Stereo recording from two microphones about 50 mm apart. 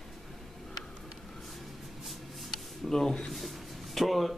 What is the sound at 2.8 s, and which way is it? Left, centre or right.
Speech, centre.